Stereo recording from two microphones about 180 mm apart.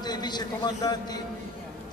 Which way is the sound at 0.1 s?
25° left (ahead or behind).